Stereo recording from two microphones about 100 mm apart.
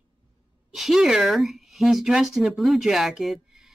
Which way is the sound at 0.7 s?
Centre (ahead or behind).